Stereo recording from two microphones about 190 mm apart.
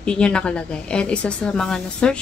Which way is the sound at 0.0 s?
5° left (ahead or behind).